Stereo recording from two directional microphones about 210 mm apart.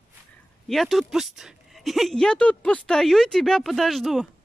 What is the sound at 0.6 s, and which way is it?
Speech, centre (ahead or behind).